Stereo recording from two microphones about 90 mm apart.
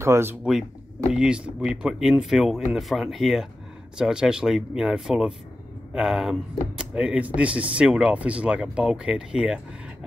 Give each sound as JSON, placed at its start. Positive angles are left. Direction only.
{"t": 0.0, "sound": "speech", "side_deg": -30}
{"t": 0.4, "sound": "speech", "side_deg": -5}